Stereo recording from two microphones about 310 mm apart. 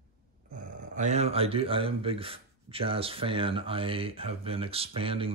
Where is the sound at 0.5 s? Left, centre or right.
Right.